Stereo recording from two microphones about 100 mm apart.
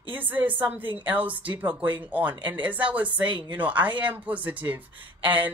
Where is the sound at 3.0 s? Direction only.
50° right (ahead or behind).